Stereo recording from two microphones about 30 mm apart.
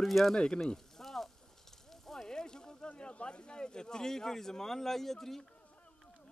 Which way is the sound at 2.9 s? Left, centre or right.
Left.